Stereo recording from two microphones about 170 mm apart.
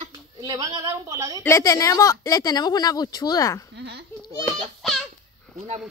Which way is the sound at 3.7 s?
80° right.